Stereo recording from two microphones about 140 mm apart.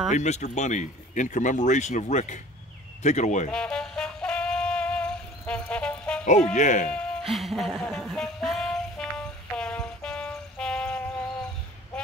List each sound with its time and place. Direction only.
0.1 s speech: 55° left (ahead or behind)
3.5 s music: 5° left (ahead or behind)
6.2 s speech: 55° left (ahead or behind)
6.9 s music: 5° left (ahead or behind)